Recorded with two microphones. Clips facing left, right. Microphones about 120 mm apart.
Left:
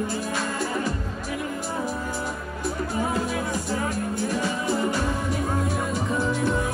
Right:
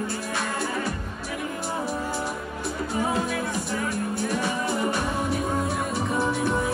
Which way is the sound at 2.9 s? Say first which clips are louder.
Right 2 dB; 15° right (ahead or behind).